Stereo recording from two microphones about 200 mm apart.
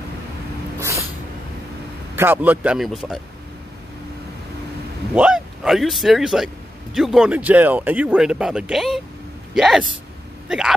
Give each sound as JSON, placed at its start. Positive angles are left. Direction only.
{"t": 0.7, "sound": "cat", "side_deg": -15}
{"t": 2.1, "sound": "speech", "side_deg": -10}
{"t": 5.1, "sound": "speech", "side_deg": -5}